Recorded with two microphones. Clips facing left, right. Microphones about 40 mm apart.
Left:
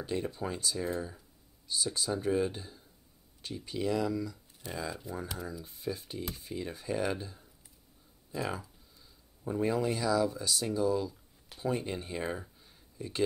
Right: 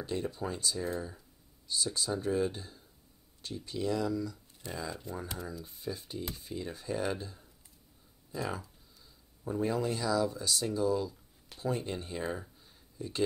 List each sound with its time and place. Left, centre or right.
0.0 s speech: centre